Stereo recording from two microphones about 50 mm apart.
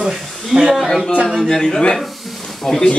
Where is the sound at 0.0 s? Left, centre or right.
Centre.